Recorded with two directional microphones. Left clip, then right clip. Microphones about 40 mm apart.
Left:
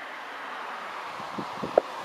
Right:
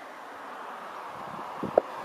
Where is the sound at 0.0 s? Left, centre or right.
Centre.